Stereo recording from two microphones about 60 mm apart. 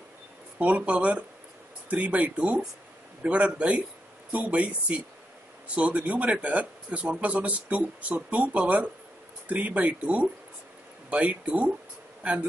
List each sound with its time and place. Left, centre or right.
0.6 s speech: right